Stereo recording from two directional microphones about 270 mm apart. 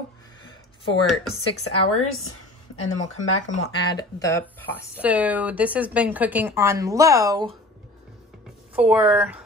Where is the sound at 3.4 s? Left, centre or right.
Left.